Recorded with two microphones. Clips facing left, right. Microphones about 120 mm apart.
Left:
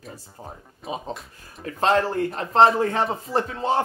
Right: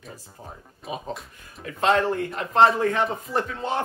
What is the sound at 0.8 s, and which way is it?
Speech, centre (ahead or behind).